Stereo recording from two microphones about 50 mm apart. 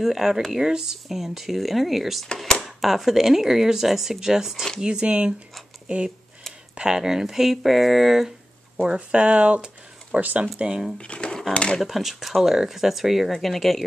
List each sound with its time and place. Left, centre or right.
0.0 s speech: centre
2.3 s a sound: centre
2.6 s speech: centre
8.8 s speech: centre
11.0 s drawer open or close: left
11.5 s speech: left
11.8 s speech: centre